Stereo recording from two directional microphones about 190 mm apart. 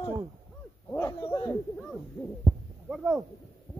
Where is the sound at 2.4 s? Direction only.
5° right (ahead or behind).